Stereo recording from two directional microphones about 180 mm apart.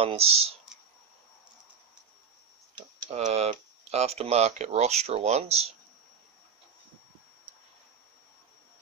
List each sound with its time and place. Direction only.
0.0 s speech: 35° right (ahead or behind)
3.1 s speech: 40° right (ahead or behind)